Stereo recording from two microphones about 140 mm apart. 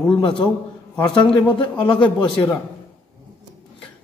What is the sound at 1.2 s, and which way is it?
Speech, 35° left (ahead or behind).